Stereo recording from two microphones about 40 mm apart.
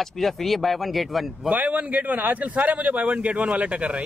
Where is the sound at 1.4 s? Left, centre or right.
Right.